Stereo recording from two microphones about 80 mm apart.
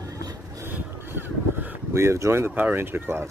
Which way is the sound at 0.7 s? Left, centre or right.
Right.